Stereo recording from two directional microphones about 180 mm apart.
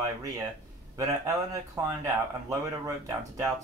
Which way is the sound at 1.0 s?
20° right (ahead or behind).